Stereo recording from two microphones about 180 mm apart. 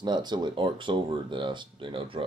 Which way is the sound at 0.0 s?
25° right (ahead or behind).